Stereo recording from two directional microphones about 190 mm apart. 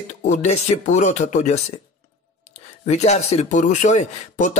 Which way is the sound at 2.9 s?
35° left (ahead or behind).